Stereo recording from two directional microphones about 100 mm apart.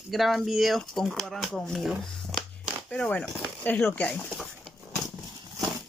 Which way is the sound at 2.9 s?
10° left (ahead or behind).